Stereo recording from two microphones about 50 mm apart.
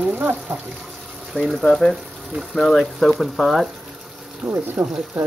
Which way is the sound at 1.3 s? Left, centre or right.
Left.